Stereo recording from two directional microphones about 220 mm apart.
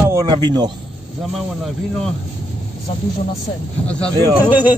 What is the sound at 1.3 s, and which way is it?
Speech, centre (ahead or behind).